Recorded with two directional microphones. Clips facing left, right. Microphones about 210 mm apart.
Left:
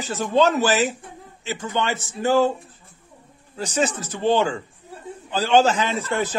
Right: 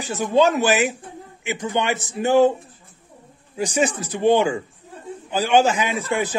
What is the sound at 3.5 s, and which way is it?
A man's voice, 10° right (ahead or behind).